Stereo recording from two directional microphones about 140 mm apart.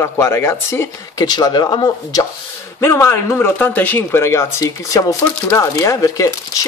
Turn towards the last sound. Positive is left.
turn(degrees=25)  # may be behind; listen again after turning